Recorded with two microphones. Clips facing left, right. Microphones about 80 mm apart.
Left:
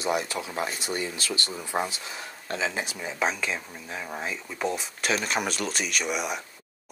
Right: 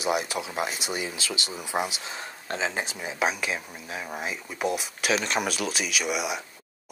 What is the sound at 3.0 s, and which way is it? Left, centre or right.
Speech, centre.